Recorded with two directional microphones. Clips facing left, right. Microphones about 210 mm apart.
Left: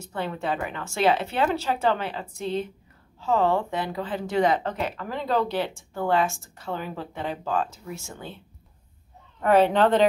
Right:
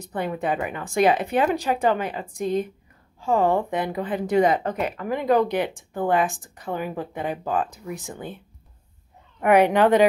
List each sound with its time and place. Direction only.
0.0 s speech: 15° right (ahead or behind)
9.4 s speech: 15° right (ahead or behind)